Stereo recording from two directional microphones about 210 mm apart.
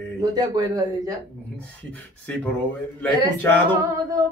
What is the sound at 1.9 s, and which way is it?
Speech, 5° left (ahead or behind).